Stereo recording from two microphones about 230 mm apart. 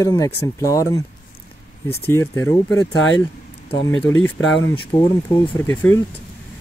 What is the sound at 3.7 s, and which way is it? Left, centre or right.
Speech, left.